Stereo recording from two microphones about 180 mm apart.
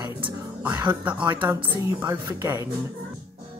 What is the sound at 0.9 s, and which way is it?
Speech, 10° right (ahead or behind).